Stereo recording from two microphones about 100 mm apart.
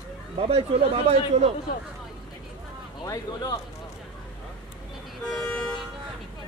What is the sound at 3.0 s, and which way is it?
Speech, 40° left (ahead or behind).